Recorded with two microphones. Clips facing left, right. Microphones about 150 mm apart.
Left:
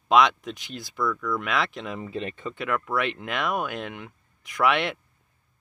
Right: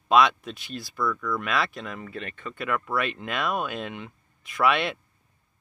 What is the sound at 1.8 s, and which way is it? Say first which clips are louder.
Speech: left 3 dB; 15° left (ahead or behind).